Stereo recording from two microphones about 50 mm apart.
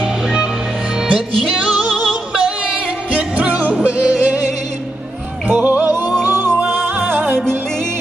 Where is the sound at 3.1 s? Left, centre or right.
Right.